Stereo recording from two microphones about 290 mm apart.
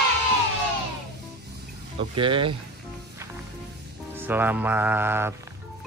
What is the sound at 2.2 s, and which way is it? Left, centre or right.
Speech, centre.